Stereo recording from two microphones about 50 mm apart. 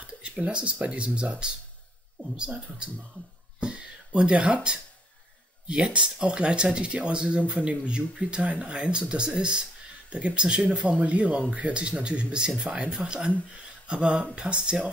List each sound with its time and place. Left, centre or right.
0.0 s speech: right
3.5 s a sound: centre
5.7 s speech: centre